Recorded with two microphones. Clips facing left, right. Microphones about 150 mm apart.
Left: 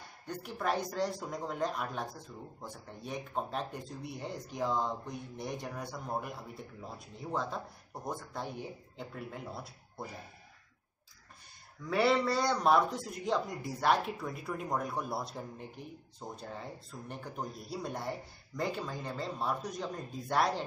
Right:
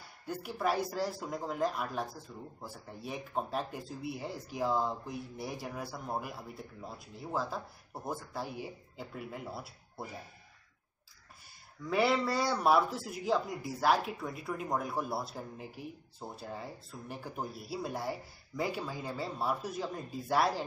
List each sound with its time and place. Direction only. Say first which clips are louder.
0.3 s speech: right 1 dB; 5° right (ahead or behind)
11.9 s speech: left 1 dB; 5° right (ahead or behind)